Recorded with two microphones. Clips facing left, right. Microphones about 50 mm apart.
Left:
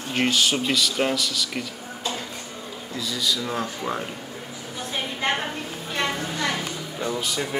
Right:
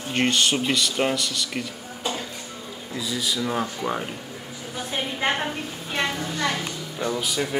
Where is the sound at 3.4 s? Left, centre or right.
Centre.